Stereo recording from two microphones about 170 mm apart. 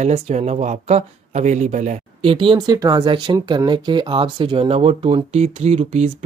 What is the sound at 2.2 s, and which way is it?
Speech, 30° right (ahead or behind).